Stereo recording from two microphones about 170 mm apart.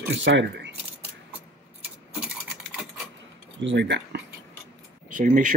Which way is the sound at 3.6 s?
90° right.